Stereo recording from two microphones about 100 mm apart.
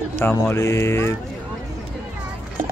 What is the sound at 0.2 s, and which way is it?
Speech, 25° left (ahead or behind).